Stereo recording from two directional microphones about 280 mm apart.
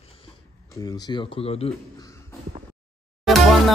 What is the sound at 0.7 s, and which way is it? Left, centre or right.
A man's voice, centre.